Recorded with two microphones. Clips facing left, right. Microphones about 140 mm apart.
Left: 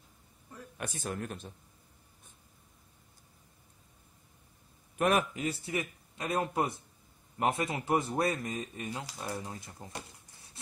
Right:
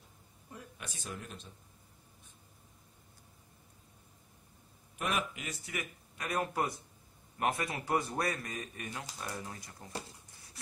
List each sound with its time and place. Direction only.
0.7 s speech: 55° left (ahead or behind)
4.9 s a man's voice: 45° left (ahead or behind); by 9.9 s 25° left (ahead or behind)